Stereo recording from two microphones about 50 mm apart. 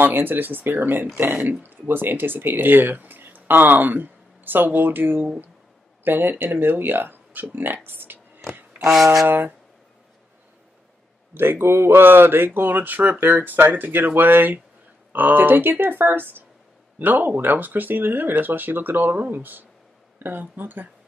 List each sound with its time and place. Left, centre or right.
0.0 s speech: right
8.9 s speech: centre
9.3 s speech: right
11.3 s speech: right